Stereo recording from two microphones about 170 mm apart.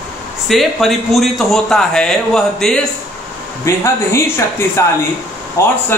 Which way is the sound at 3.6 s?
15° left (ahead or behind).